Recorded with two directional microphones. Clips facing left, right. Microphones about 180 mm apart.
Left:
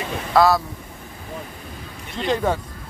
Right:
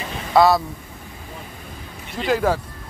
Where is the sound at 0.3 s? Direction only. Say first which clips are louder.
Right 1 dB; centre (ahead or behind).